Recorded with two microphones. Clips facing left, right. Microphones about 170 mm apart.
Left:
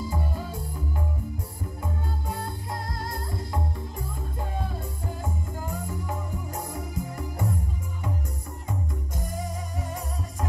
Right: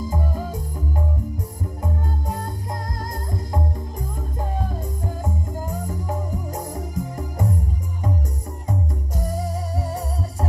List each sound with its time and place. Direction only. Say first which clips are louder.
0.0 s music: right 4 dB; 45° right (ahead or behind)
5.2 s music: right 4 dB; 40° right (ahead or behind)
8.6 s music: right 6 dB; 40° right (ahead or behind)